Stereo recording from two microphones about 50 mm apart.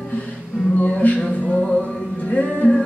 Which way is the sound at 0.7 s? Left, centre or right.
Left.